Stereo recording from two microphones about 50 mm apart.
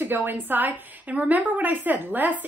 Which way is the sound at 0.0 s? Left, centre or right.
Right.